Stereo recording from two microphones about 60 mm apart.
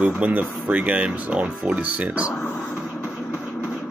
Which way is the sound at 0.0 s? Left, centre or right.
Right.